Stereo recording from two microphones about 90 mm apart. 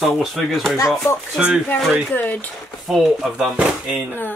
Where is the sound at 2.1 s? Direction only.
20° left (ahead or behind).